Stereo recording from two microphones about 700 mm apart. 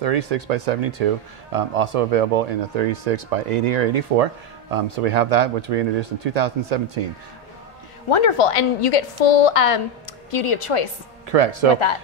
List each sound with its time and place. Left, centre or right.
0.0 s speech: right
8.1 s a woman's voice: left
11.2 s speech: right
11.7 s a woman's voice: left